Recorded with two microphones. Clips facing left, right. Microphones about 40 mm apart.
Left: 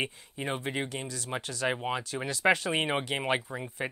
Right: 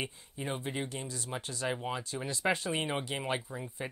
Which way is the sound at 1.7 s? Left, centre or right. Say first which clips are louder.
Left 4 dB; left.